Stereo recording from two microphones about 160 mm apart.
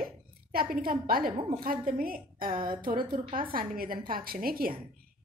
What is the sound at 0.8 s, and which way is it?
A woman's voice, 65° right (ahead or behind).